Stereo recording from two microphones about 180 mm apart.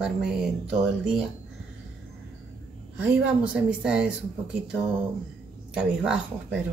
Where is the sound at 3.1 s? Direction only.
5° right (ahead or behind).